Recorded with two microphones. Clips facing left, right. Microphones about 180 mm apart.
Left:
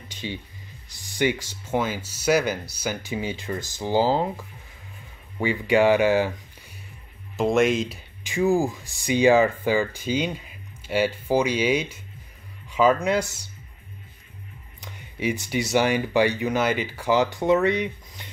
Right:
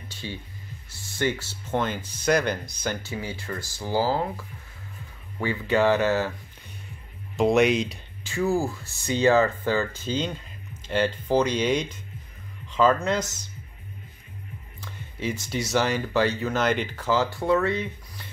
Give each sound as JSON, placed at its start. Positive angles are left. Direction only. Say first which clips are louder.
{"t": 0.1, "sound": "music", "louder": "left 3 dB", "side_deg": 15}
{"t": 0.8, "sound": "speech", "louder": "left 3 dB", "side_deg": 15}
{"t": 7.3, "sound": "speech", "louder": "even", "side_deg": 0}
{"t": 8.2, "sound": "speech", "louder": "left 3 dB", "side_deg": 15}
{"t": 14.8, "sound": "music", "louder": "left 3 dB", "side_deg": 15}
{"t": 15.7, "sound": "speech", "louder": "left 3 dB", "side_deg": 15}